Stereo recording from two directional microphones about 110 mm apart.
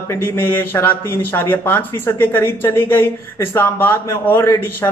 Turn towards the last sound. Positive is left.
turn(degrees=20)  # may be behind; listen again after turning